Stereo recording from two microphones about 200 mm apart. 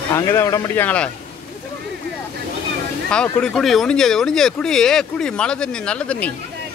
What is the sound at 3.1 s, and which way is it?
Speech, 5° left (ahead or behind).